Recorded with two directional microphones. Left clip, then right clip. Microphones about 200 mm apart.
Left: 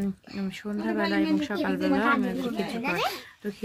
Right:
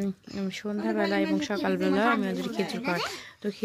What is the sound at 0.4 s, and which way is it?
Speech, 40° right (ahead or behind).